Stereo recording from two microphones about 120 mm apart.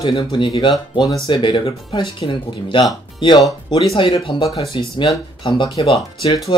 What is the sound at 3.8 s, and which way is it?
Speech, 45° left (ahead or behind).